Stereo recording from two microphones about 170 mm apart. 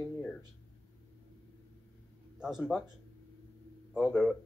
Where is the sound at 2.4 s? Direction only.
Centre (ahead or behind).